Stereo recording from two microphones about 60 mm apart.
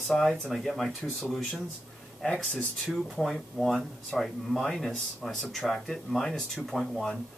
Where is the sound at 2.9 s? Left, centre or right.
Centre.